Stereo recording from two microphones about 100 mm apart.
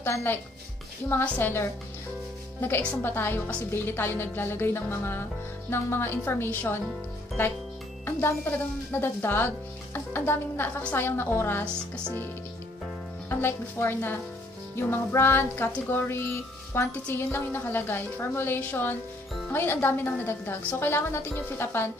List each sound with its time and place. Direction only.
0.0 s a woman's voice: 20° left (ahead or behind)
3.0 s speech: 20° left (ahead or behind)
8.0 s speech: 20° left (ahead or behind)
13.3 s speech: 25° left (ahead or behind)